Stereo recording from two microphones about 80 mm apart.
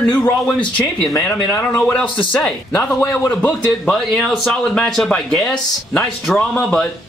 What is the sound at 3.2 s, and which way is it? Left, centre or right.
Speech, left.